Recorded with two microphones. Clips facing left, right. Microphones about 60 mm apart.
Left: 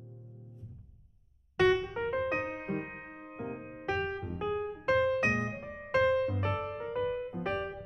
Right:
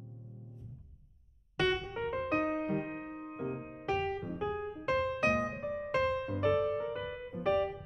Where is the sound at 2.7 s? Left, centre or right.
Left.